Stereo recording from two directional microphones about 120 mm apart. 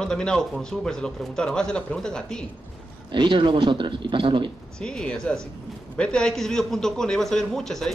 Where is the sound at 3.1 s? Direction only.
40° right (ahead or behind).